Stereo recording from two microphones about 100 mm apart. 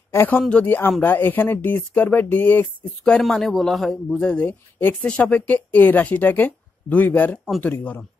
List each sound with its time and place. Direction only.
0.1 s speech: 25° left (ahead or behind)
0.4 s speech: 10° left (ahead or behind)
3.0 s speech: 5° left (ahead or behind)